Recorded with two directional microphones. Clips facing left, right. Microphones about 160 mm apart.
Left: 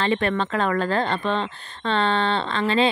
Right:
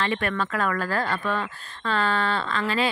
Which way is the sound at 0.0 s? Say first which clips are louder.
Left 4 dB; 25° left (ahead or behind).